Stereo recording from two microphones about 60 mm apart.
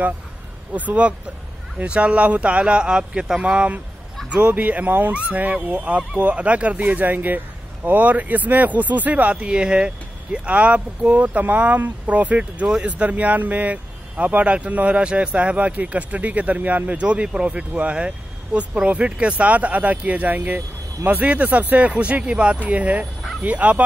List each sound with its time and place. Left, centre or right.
0.7 s speech: right